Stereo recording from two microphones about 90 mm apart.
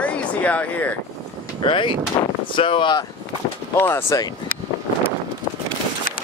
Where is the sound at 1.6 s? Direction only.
70° left (ahead or behind).